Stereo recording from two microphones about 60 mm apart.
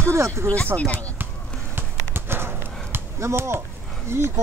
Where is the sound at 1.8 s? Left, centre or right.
Right.